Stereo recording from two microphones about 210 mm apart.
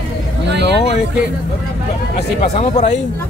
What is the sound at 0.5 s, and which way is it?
Speech, 55° right (ahead or behind).